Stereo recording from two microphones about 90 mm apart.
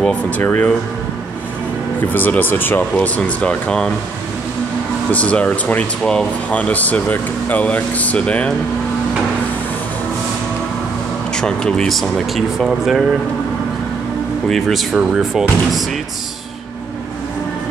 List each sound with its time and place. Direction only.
0.4 s speech: 20° left (ahead or behind)
2.1 s speech: 20° left (ahead or behind)
5.1 s speech: 15° left (ahead or behind)
11.3 s speech: 10° left (ahead or behind)
14.5 s speech: centre (ahead or behind)